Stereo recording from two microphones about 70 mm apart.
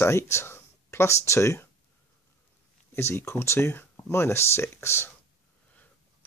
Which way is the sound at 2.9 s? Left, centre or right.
Left.